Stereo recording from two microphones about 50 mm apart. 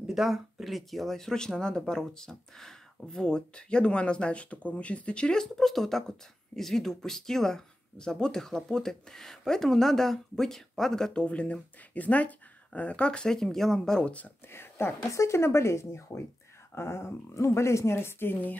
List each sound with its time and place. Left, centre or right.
0.1 s speech: centre; by 5.4 s left
5.4 s speech: centre
11.2 s speech: left
13.3 s speech: centre
14.5 s speech: left
15.0 s speech: left